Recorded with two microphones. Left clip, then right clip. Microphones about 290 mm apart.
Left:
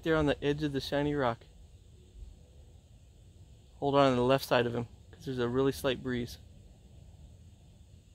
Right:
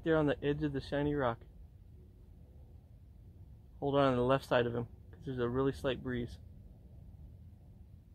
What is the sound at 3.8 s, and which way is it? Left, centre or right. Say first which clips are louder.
Speech: left 4 dB; left.